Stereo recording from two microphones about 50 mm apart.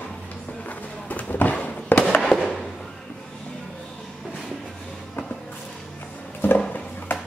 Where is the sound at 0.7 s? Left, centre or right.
Left.